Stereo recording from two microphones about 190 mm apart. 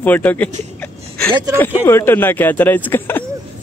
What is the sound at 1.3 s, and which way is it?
Speech, 20° right (ahead or behind).